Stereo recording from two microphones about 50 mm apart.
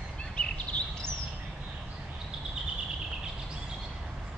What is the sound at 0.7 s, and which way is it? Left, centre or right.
Bird, left.